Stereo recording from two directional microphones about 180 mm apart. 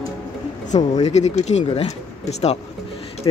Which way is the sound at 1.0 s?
40° left (ahead or behind).